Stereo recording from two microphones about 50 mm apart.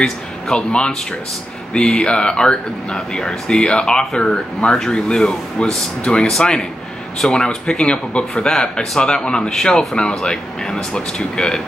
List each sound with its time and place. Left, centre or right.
0.0 s speech: centre